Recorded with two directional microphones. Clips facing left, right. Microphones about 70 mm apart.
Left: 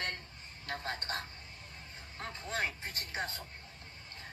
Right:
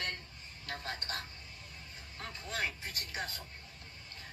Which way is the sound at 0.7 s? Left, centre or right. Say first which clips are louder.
Left 2 dB; left.